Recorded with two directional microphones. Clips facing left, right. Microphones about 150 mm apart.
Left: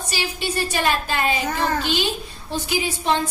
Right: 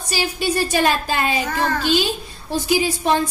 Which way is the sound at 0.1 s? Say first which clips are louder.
Right 5 dB; 40° right (ahead or behind).